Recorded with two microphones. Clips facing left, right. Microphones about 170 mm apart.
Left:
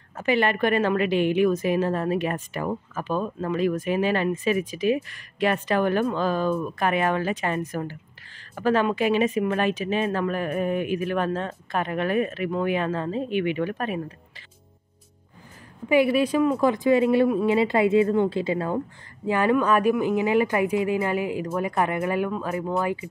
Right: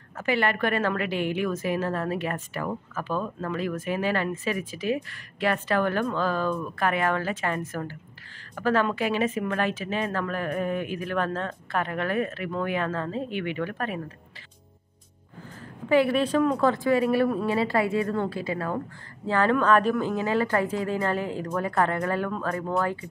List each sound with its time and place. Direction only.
0.2 s a woman's voice: 20° left (ahead or behind)
15.9 s a woman's voice: 10° left (ahead or behind)